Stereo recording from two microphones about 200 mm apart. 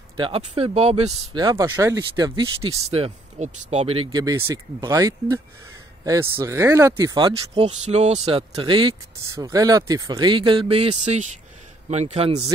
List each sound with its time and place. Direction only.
0.2 s speech: 30° right (ahead or behind)
1.4 s speech: 15° right (ahead or behind); by 12.4 s 30° right (ahead or behind)